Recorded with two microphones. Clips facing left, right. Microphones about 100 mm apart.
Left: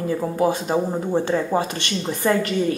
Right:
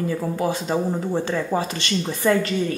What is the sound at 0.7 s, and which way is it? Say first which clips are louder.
Speech: left 2 dB; 15° left (ahead or behind).